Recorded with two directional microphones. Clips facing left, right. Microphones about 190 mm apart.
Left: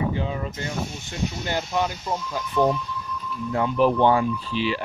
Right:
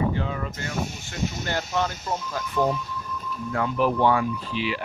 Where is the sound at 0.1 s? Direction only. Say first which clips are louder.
Left 1 dB; 20° left (ahead or behind).